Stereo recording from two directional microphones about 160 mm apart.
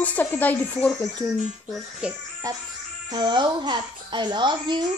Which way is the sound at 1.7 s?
5° right (ahead or behind).